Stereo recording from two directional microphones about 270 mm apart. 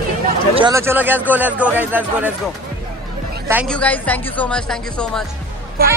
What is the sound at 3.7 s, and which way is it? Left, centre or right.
Speech, centre.